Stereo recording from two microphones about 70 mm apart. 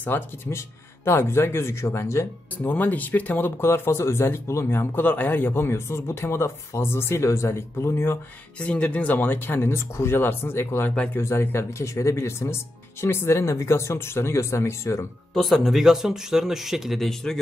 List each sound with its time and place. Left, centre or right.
0.0 s speech: left
2.5 s speech: left
8.5 s speech: centre; by 11.6 s left
11.8 s speech: left
15.3 s speech: centre